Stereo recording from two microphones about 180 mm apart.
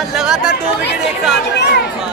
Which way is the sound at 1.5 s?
70° left (ahead or behind).